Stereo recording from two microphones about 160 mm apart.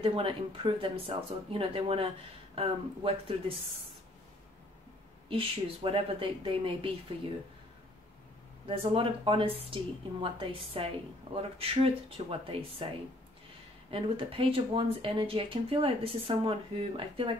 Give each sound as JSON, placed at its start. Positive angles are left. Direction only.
{"t": 0.0, "sound": "speech", "side_deg": -35}
{"t": 5.3, "sound": "speech", "side_deg": -35}
{"t": 8.6, "sound": "speech", "side_deg": -35}